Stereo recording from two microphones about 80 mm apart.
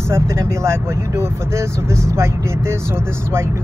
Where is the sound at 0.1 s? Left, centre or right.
Right.